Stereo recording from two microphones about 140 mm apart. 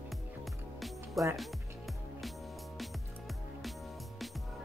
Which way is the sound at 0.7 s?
Centre (ahead or behind).